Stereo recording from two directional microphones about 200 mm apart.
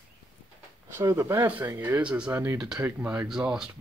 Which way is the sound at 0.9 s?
15° right (ahead or behind).